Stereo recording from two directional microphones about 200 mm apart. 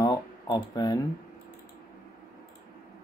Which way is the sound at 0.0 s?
15° left (ahead or behind).